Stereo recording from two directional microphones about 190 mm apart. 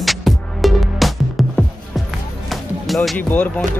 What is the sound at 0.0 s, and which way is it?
Music, centre (ahead or behind).